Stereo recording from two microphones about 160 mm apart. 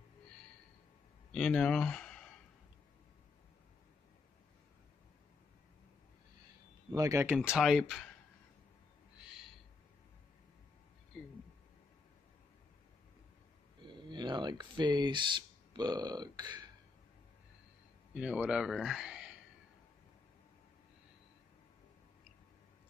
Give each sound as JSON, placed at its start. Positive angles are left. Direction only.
{"t": 1.3, "sound": "speech", "side_deg": 5}
{"t": 6.9, "sound": "speech", "side_deg": -20}
{"t": 7.3, "sound": "speech", "side_deg": 0}
{"t": 11.1, "sound": "a sound", "side_deg": 0}
{"t": 13.8, "sound": "speech", "side_deg": -30}
{"t": 18.1, "sound": "speech", "side_deg": -5}